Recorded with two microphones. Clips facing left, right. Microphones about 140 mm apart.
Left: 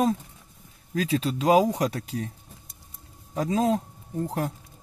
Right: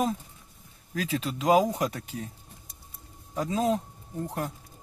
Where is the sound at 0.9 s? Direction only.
35° left (ahead or behind).